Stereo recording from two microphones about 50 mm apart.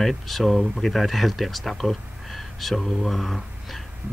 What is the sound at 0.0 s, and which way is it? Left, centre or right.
Speech, centre.